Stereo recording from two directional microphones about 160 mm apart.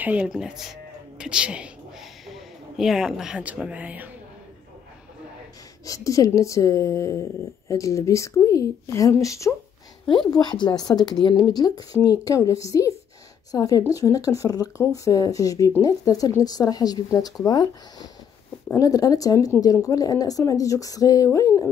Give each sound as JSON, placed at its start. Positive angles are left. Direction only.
{"t": 0.0, "sound": "speech", "side_deg": -10}
{"t": 5.9, "sound": "speech", "side_deg": 20}